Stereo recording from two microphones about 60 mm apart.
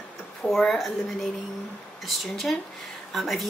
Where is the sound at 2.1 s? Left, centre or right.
Centre.